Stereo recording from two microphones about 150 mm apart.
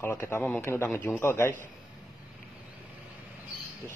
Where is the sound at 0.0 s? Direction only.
15° left (ahead or behind).